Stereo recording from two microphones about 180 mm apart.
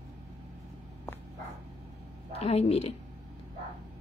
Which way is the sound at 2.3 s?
35° left (ahead or behind).